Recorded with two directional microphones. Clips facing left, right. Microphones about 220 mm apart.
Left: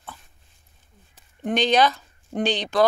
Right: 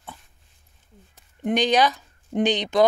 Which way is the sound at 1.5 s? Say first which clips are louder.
Even; 15° right (ahead or behind).